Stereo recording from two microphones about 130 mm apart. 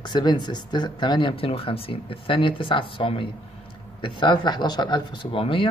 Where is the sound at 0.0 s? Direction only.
35° left (ahead or behind).